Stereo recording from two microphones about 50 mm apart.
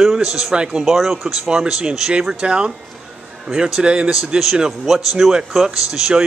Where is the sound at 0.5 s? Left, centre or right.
Centre.